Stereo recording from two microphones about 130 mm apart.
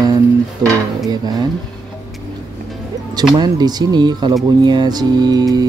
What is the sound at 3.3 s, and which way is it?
Speech, 30° right (ahead or behind).